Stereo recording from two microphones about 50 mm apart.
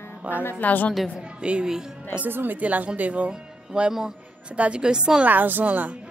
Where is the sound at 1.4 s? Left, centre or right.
Centre.